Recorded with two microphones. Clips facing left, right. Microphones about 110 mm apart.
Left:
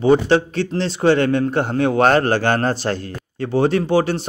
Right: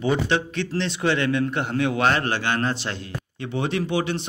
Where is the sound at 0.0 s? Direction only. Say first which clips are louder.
Left 8 dB; 35° left (ahead or behind).